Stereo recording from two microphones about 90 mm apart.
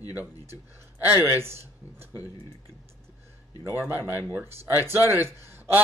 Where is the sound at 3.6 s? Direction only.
25° right (ahead or behind).